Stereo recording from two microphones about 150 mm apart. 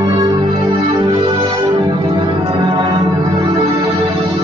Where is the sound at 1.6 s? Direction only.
30° right (ahead or behind).